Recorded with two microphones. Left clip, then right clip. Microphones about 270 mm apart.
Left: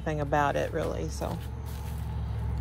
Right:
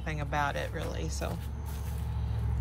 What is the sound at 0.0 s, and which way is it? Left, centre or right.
Speech, centre.